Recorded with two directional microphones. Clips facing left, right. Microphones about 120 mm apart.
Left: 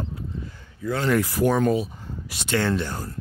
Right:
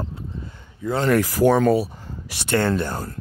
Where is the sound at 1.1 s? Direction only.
90° right.